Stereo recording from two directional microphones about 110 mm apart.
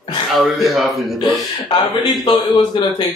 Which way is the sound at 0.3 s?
Centre (ahead or behind).